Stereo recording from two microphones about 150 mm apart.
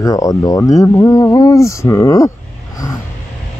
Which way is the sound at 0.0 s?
25° left (ahead or behind).